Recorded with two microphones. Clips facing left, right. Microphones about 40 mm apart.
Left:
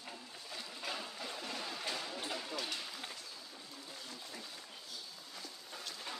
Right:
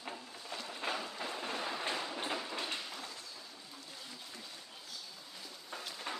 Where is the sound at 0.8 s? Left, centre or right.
Right.